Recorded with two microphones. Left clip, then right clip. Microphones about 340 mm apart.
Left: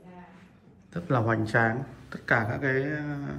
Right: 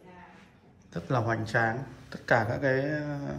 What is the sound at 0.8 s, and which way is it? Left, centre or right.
A man's voice, centre.